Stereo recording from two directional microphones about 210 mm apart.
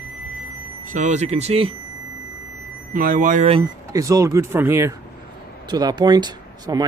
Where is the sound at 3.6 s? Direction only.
15° right (ahead or behind).